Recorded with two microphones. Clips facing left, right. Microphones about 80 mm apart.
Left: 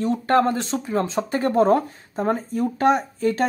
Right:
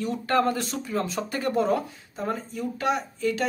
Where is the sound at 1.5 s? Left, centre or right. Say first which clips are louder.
Left 7 dB; left.